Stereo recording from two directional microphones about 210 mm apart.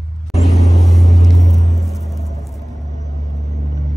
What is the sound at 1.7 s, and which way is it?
Music, centre (ahead or behind).